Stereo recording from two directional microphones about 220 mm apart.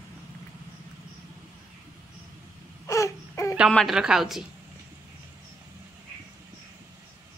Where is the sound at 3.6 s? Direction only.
Centre (ahead or behind).